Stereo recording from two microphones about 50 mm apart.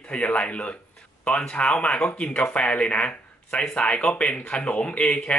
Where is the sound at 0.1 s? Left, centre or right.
Left.